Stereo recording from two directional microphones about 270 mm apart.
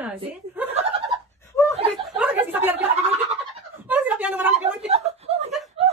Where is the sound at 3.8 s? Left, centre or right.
Centre.